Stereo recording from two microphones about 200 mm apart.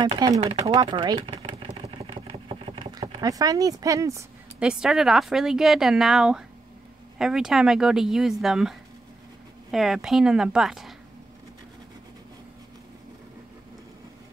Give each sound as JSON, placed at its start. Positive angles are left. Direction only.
{"t": 0.0, "sound": "speech", "side_deg": -20}